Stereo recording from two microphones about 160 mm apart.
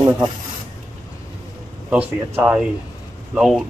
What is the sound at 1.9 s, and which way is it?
A man's voice, 10° right (ahead or behind).